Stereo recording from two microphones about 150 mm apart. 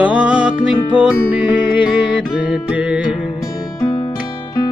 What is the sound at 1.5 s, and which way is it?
Music, 30° left (ahead or behind).